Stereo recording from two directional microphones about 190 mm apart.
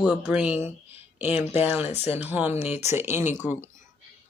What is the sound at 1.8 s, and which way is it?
Speech, 35° left (ahead or behind).